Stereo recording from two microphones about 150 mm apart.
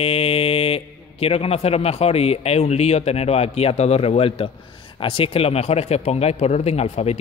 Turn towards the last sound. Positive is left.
turn(degrees=45)  # may be behind; listen again after turning